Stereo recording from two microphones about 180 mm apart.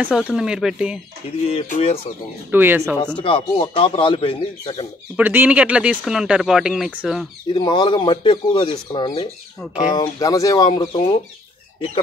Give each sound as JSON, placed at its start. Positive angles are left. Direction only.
{"t": 0.0, "sound": "speech", "side_deg": -5}
{"t": 1.4, "sound": "speech", "side_deg": 35}
{"t": 2.5, "sound": "speech", "side_deg": -10}
{"t": 3.2, "sound": "speech", "side_deg": 30}
{"t": 5.1, "sound": "speech", "side_deg": -10}
{"t": 7.5, "sound": "speech", "side_deg": 25}